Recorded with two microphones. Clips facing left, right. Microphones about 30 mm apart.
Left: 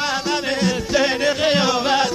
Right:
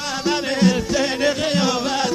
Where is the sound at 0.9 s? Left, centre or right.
Centre.